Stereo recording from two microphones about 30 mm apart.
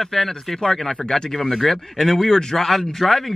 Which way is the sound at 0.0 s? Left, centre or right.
Centre.